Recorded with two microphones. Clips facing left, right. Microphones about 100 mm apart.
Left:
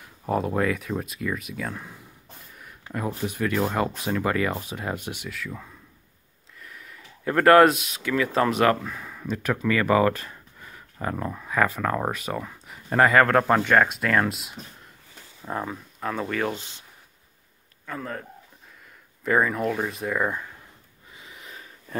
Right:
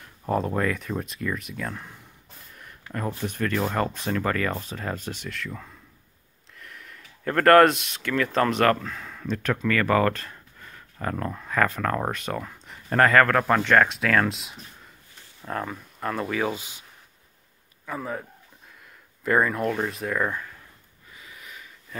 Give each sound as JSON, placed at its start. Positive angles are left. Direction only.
{"t": 0.0, "sound": "speech", "side_deg": 5}
{"t": 13.6, "sound": "speech", "side_deg": 10}
{"t": 17.8, "sound": "a man's voice", "side_deg": -10}
{"t": 19.2, "sound": "speech", "side_deg": 0}
{"t": 20.2, "sound": "speech", "side_deg": 15}
{"t": 21.1, "sound": "a sound", "side_deg": 25}